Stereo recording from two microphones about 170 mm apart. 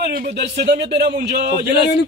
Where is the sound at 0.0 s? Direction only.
75° right (ahead or behind).